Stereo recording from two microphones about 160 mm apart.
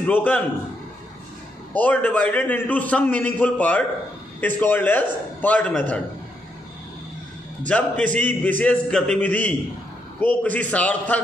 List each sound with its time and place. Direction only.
0.0 s a man's voice: 10° left (ahead or behind)
1.7 s a man's voice: 10° left (ahead or behind)
7.6 s a man's voice: 10° left (ahead or behind)